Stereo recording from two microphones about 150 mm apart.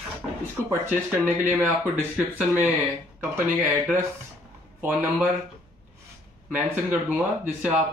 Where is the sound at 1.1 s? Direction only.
10° right (ahead or behind).